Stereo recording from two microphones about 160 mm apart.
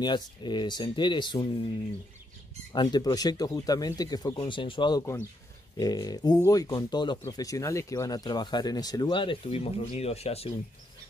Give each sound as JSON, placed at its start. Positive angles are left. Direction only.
{"t": 0.0, "sound": "speech", "side_deg": 30}
{"t": 2.7, "sound": "speech", "side_deg": 25}